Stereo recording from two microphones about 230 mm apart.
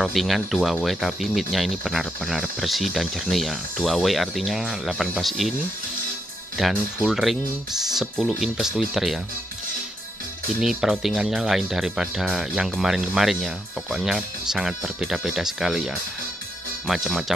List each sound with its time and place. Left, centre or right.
0.0 s speech: centre
6.6 s speech: centre
10.6 s speech: centre